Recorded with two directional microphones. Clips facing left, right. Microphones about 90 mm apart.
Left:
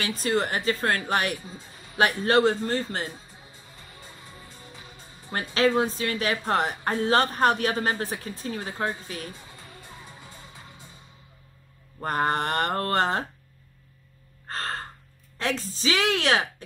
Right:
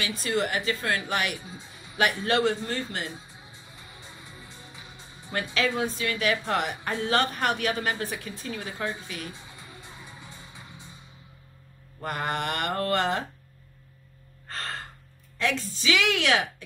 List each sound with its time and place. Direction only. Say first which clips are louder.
0.0 s a woman's voice: left 2 dB; 40° left (ahead or behind)
5.3 s a woman's voice: left 5 dB; 35° left (ahead or behind)
12.0 s a woman's voice: left 5 dB; 35° left (ahead or behind)
14.5 s gasp: left 4 dB; 40° left (ahead or behind)
15.3 s a woman's voice: right 1 dB; 30° left (ahead or behind)